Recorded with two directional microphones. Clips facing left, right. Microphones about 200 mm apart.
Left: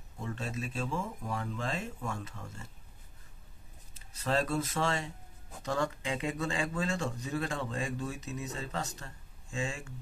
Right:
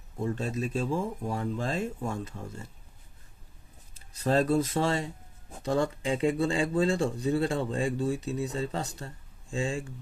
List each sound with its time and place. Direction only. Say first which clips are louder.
0.2 s speech: right 7 dB; 35° right (ahead or behind)
4.2 s speech: right 6 dB; 35° right (ahead or behind)